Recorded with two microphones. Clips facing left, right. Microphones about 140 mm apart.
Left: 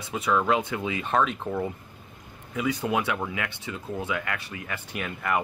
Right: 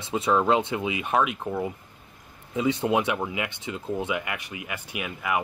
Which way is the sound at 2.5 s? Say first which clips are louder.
Right 3 dB; 25° right (ahead or behind).